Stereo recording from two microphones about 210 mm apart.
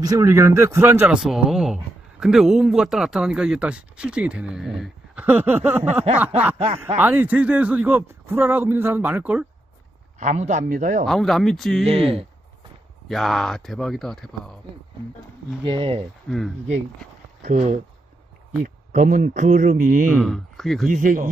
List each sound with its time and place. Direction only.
0.0 s a man's voice: 15° right (ahead or behind)
10.1 s speech: 35° right (ahead or behind)
11.1 s speech: centre (ahead or behind)
11.8 s speech: 25° right (ahead or behind)
13.1 s speech: centre (ahead or behind)
15.6 s speech: 25° right (ahead or behind)
16.3 s speech: centre (ahead or behind)
17.4 s speech: 30° right (ahead or behind)
20.2 s speech: centre (ahead or behind)
20.9 s speech: 40° right (ahead or behind)